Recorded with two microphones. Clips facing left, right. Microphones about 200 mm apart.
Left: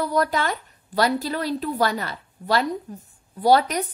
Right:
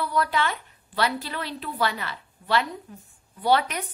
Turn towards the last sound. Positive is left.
turn(degrees=40)  # may be behind; listen again after turning